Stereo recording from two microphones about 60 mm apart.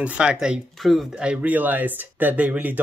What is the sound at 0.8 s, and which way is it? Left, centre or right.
Speech, centre.